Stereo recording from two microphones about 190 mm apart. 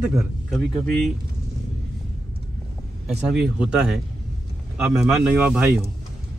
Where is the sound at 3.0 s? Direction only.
5° right (ahead or behind).